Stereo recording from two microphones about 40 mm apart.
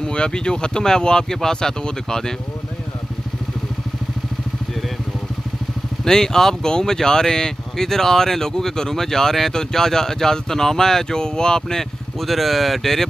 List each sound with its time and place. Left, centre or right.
0.0 s speech: left
6.0 s speech: centre
12.2 s speech: centre